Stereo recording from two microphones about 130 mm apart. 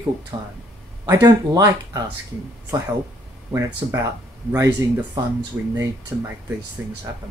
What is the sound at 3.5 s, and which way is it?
Speech, 20° right (ahead or behind).